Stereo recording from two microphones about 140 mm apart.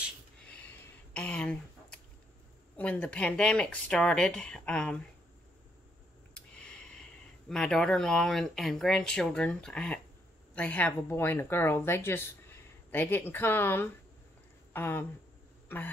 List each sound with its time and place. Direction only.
1.1 s a sound: 10° left (ahead or behind)
2.8 s speech: 10° left (ahead or behind)
6.5 s speech: 5° left (ahead or behind)